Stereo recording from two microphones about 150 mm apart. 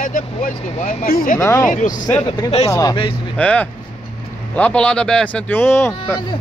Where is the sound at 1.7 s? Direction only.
60° left (ahead or behind).